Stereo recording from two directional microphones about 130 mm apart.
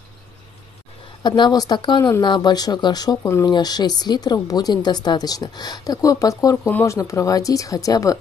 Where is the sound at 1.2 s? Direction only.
35° left (ahead or behind).